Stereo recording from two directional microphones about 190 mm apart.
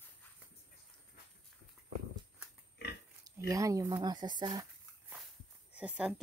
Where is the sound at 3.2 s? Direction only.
15° right (ahead or behind).